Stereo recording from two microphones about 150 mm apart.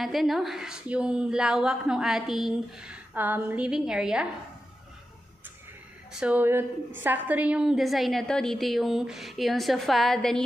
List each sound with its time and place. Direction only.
0.0 s a woman's voice: centre (ahead or behind)
6.1 s a woman's voice: 10° right (ahead or behind)